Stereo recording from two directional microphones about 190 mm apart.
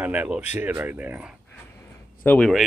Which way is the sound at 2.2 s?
5° left (ahead or behind).